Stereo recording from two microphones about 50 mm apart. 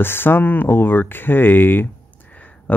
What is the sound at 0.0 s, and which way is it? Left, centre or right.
Speech, left.